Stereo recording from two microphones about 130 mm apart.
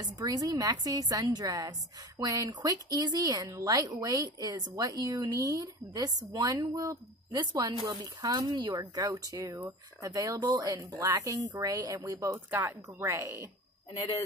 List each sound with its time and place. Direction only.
0.0 s a woman's voice: 30° right (ahead or behind)